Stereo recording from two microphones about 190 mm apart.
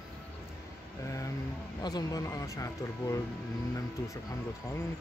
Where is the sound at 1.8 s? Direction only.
20° left (ahead or behind).